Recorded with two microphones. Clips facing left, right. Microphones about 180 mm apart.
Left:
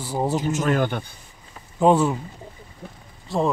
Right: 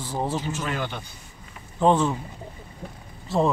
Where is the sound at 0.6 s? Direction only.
50° left (ahead or behind).